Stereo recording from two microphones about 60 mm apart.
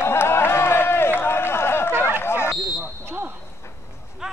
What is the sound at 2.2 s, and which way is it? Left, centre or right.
Smoke detector, left.